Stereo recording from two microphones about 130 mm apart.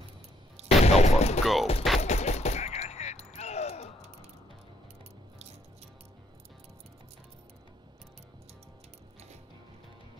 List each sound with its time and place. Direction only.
0.7 s gunshot: 55° left (ahead or behind)
1.4 s speech: centre (ahead or behind)
2.0 s a sound: 60° left (ahead or behind)